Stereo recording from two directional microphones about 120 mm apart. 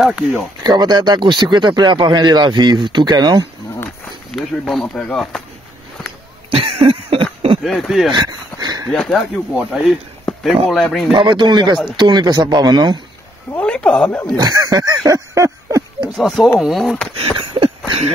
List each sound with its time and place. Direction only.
0.0 s speech: centre (ahead or behind)
0.7 s speech: 35° right (ahead or behind)
3.7 s a sound: 20° left (ahead or behind)
4.3 s speech: centre (ahead or behind)
6.5 s cough: 50° right (ahead or behind)
7.6 s speech: centre (ahead or behind)
8.1 s a sound: 35° right (ahead or behind)
8.9 s speech: 5° left (ahead or behind)
11.1 s speech: 40° right (ahead or behind)
13.5 s speech: 10° left (ahead or behind)
14.3 s speech: 35° right (ahead or behind)
16.2 s speech: centre (ahead or behind)
17.1 s a sound: 50° right (ahead or behind)